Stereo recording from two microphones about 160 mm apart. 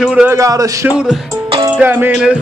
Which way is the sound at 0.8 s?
5° right (ahead or behind).